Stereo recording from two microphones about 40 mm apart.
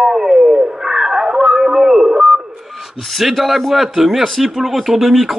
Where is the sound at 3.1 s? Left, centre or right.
Centre.